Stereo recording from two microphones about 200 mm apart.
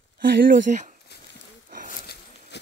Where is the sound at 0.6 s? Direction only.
40° right (ahead or behind).